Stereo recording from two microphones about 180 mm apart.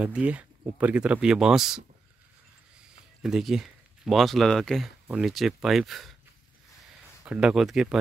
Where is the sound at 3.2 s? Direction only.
Centre (ahead or behind).